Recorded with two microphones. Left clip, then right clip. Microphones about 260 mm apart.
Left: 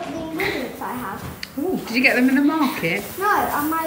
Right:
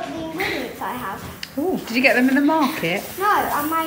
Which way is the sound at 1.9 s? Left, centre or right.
Centre.